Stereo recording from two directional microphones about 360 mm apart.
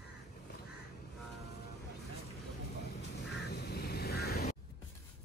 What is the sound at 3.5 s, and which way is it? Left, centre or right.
Duck, left.